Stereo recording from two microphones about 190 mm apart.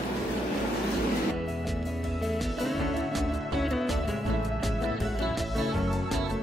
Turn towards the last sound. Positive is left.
turn(degrees=0)  # may be behind; listen again after turning